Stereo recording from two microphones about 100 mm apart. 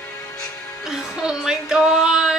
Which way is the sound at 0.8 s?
5° right (ahead or behind).